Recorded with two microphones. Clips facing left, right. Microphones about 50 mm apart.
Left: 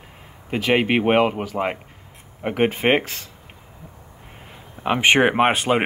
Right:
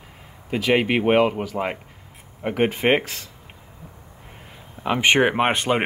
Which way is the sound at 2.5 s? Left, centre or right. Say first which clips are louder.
Left 1 dB; left.